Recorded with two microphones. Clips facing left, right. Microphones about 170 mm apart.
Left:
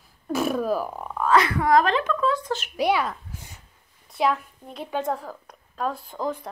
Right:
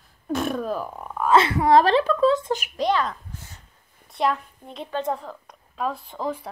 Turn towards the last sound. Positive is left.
turn(degrees=0)  # may be behind; listen again after turning